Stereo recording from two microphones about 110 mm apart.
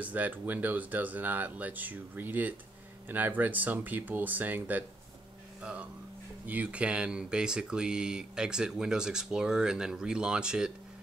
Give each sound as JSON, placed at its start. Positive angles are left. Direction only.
{"t": 0.0, "sound": "speech", "side_deg": -15}